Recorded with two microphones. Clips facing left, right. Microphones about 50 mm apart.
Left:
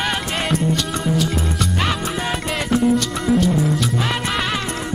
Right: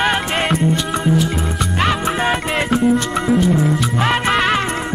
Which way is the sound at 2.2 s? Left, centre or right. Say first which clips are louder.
Right 5 dB; right.